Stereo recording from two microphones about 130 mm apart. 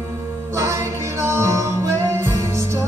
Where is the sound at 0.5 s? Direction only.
20° right (ahead or behind).